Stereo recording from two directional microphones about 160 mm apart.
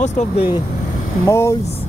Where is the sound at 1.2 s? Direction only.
15° left (ahead or behind).